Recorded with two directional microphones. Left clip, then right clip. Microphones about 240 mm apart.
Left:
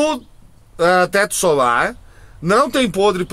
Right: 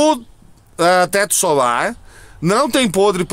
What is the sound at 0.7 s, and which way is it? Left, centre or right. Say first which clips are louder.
Speech: right 1 dB; right.